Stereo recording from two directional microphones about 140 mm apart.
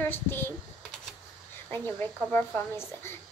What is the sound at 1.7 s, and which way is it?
Speech, 15° left (ahead or behind).